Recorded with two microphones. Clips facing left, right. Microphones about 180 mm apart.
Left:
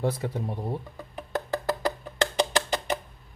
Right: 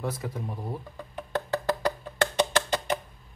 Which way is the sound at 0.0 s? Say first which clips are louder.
Left 4 dB; 30° left (ahead or behind).